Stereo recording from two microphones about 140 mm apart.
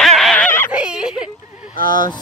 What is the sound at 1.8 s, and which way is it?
Speech, 70° right (ahead or behind).